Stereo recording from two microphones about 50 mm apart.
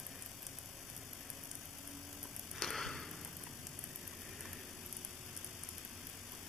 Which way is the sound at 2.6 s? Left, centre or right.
Centre.